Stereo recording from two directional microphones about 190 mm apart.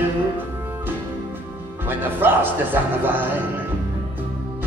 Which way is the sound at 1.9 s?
10° right (ahead or behind).